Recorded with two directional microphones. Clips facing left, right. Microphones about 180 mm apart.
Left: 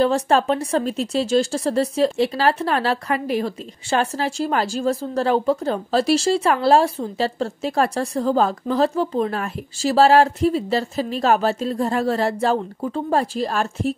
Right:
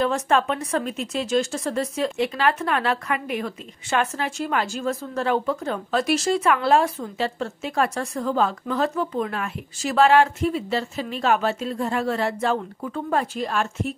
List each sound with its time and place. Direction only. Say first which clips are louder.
0.0 s speech: left 4 dB; 35° left (ahead or behind)